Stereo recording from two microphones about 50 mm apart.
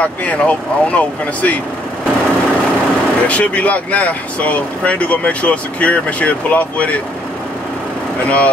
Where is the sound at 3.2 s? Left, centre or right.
Left.